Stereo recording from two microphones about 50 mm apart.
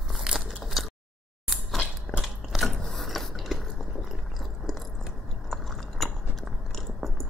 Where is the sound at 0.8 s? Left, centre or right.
Centre.